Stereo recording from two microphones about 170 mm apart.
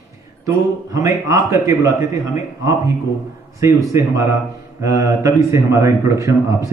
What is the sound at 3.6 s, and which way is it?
A man's voice, 15° right (ahead or behind).